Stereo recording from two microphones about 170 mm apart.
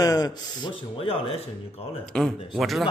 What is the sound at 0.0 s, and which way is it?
Speech, 20° left (ahead or behind).